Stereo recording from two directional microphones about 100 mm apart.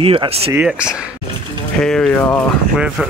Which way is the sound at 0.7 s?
10° right (ahead or behind).